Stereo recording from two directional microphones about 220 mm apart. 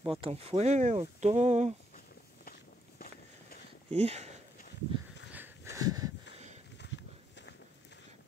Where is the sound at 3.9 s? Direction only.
30° right (ahead or behind).